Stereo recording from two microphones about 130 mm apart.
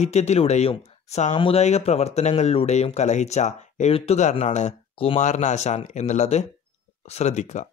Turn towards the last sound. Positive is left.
turn(degrees=65)  # may be behind; listen again after turning